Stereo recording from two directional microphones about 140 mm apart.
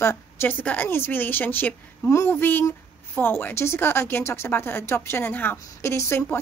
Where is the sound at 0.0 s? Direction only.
15° left (ahead or behind).